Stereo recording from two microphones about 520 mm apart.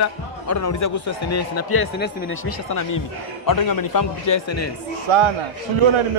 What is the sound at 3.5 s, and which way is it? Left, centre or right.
A man's voice, left.